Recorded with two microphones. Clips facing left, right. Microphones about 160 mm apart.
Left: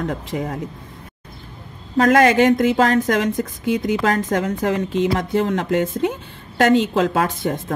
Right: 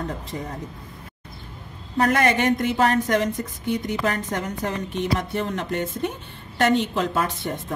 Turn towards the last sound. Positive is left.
turn(degrees=90)